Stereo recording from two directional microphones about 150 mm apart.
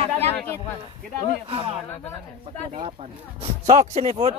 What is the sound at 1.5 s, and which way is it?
Speech, 40° right (ahead or behind).